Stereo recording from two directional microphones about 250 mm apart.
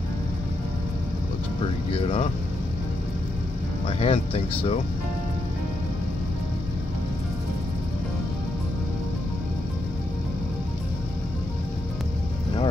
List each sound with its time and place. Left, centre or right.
3.8 s speech: left